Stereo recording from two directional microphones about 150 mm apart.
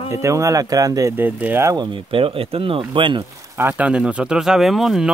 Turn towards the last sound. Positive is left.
turn(degrees=0)  # may be behind; listen again after turning